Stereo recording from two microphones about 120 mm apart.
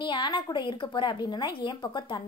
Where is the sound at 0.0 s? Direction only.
40° left (ahead or behind).